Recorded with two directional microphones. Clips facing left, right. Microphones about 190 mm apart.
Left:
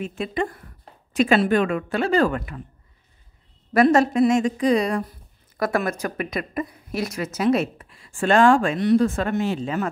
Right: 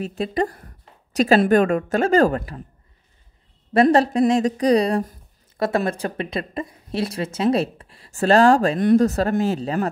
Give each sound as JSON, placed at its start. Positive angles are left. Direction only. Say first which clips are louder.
{"t": 0.0, "sound": "a woman's voice", "louder": "right 3 dB", "side_deg": -35}
{"t": 3.7, "sound": "a woman's voice", "louder": "right 1 dB", "side_deg": -30}